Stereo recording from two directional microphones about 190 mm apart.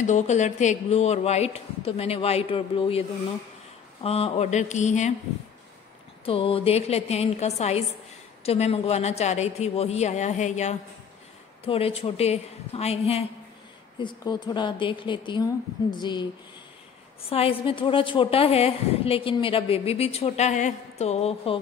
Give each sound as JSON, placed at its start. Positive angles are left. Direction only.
{"t": 0.0, "sound": "a woman's voice", "side_deg": 40}
{"t": 6.2, "sound": "a woman's voice", "side_deg": 30}
{"t": 17.3, "sound": "a woman's voice", "side_deg": 30}